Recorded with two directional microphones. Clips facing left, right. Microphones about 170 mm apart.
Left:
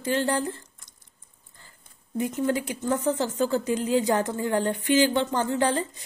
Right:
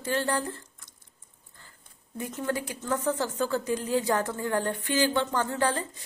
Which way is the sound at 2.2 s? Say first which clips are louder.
Left 5 dB; 15° left (ahead or behind).